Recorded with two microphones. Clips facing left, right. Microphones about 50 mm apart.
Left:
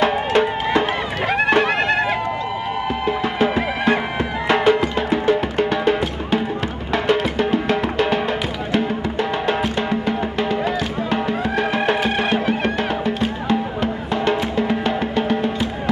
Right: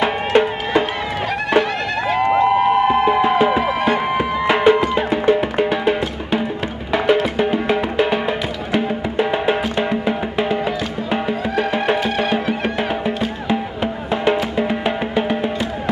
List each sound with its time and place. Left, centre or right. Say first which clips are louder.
0.0 s music: right 1 dB; centre
2.2 s a sound: right 9 dB; right
3.2 s music: right 5 dB; centre